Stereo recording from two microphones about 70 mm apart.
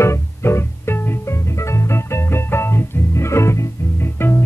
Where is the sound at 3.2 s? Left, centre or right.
Left.